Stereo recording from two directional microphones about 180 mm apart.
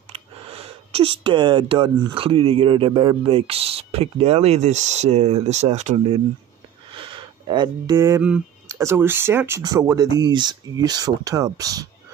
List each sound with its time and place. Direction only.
0.1 s speech: 35° right (ahead or behind)
6.9 s a sound: 30° right (ahead or behind)
8.6 s speech: 15° right (ahead or behind)